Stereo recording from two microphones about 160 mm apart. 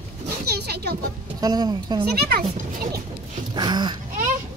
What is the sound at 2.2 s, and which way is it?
Speech, 75° right (ahead or behind).